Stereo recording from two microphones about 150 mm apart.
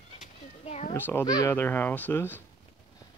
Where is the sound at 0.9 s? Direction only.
15° left (ahead or behind).